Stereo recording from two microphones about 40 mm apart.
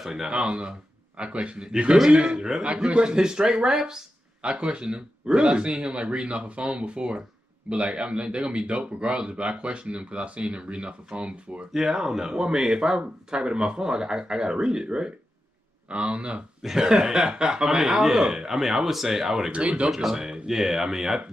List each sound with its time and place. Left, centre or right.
0.0 s speech: centre
0.3 s speech: right
2.6 s speech: right
4.4 s speech: right
11.7 s speech: centre; by 16.4 s right
16.6 s speech: centre
19.5 s speech: right
19.9 s speech: centre